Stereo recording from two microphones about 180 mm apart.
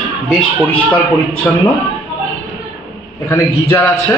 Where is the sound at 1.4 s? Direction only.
10° left (ahead or behind).